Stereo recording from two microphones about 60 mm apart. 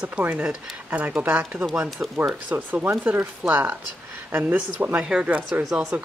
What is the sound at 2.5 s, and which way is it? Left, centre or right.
Speech, right.